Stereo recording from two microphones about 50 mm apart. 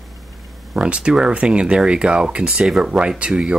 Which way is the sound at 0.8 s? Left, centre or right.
Centre.